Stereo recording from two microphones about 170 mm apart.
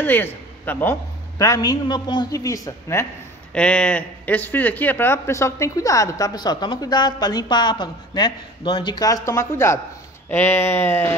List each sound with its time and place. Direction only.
0.0 s a man's voice: 10° left (ahead or behind)
3.5 s speech: 5° left (ahead or behind)